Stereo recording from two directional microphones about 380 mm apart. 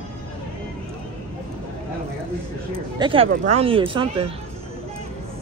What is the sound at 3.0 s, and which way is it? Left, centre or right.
Speech, centre.